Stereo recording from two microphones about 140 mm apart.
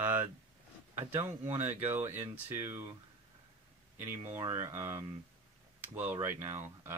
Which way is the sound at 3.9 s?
15° right (ahead or behind).